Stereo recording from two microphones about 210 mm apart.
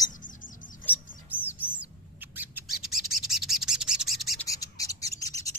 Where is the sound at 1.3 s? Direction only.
10° right (ahead or behind).